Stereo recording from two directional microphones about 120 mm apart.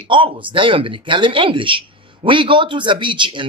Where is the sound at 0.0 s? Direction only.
45° right (ahead or behind).